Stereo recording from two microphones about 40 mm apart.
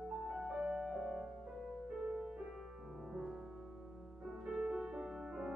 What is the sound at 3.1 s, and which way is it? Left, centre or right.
Music, centre.